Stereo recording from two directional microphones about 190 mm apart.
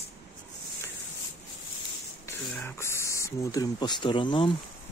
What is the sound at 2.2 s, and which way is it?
Speech, 15° left (ahead or behind).